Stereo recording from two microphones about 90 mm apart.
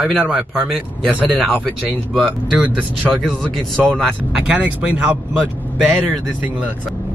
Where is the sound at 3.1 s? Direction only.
Centre (ahead or behind).